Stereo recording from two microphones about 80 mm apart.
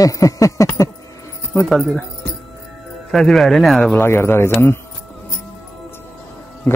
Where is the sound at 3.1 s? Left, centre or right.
Centre.